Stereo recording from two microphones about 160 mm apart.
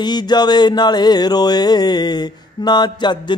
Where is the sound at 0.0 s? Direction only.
25° left (ahead or behind).